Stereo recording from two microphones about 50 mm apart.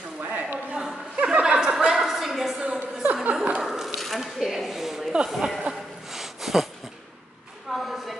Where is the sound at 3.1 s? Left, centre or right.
Right.